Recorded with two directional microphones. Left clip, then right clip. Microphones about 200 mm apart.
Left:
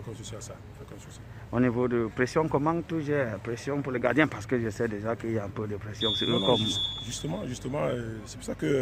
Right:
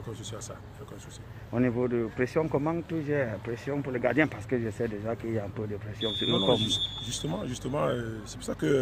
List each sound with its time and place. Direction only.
1.5 s speech: 20° left (ahead or behind)
6.5 s speech: 5° left (ahead or behind)